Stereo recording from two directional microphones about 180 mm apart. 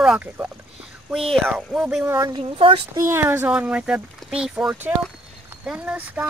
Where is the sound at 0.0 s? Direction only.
5° right (ahead or behind).